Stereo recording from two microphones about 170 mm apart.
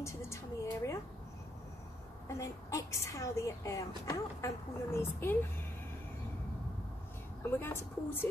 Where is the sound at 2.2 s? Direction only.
15° left (ahead or behind).